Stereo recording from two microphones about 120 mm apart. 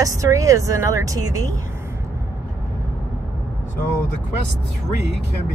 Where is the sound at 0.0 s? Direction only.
25° right (ahead or behind).